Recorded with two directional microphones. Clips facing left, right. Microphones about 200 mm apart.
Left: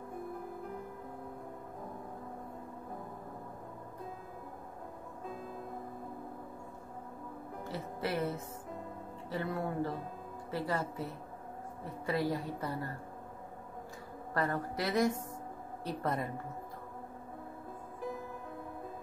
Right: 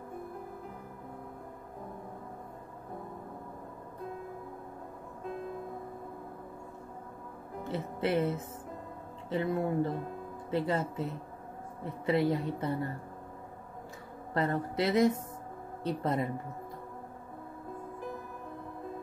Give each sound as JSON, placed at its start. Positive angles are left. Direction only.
{"t": 7.6, "sound": "a woman's voice", "side_deg": -25}
{"t": 14.3, "sound": "a woman's voice", "side_deg": -25}